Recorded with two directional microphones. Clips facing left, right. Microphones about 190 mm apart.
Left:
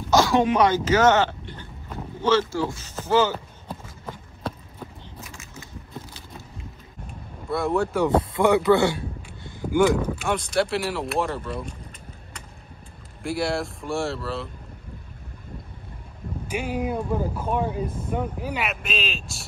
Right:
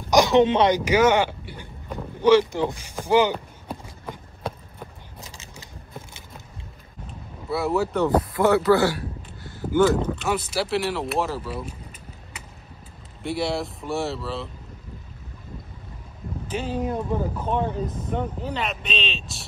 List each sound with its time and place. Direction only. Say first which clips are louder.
0.1 s speech: right 2 dB; 20° right (ahead or behind)
0.7 s speech: even; 10° right (ahead or behind)
2.2 s a sound: right 4 dB; 15° right (ahead or behind)
7.4 s speech: even; 5° right (ahead or behind)
8.1 s a man's voice: even; 20° left (ahead or behind)
10.2 s speech: left 2 dB; 5° right (ahead or behind)
13.2 s speech: even; centre (ahead or behind)
16.4 s speech: even; 10° left (ahead or behind)